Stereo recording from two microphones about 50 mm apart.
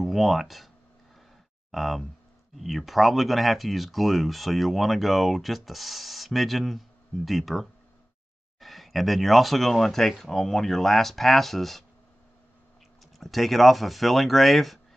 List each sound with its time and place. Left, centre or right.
0.0 s speech: centre
1.7 s speech: centre
13.2 s speech: centre